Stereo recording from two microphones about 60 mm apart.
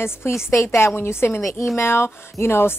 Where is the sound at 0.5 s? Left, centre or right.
Left.